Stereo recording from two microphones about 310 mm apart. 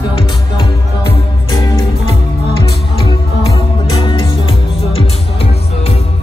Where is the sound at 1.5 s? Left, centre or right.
Centre.